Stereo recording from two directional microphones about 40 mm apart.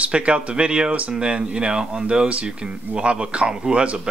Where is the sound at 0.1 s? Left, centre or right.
Right.